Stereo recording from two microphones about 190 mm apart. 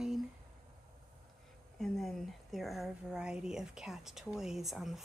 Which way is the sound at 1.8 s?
Centre (ahead or behind).